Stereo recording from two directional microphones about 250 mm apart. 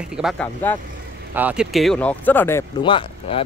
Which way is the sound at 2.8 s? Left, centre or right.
Left.